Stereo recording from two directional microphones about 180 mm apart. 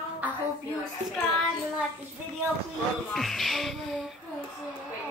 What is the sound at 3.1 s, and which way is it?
Music, centre (ahead or behind).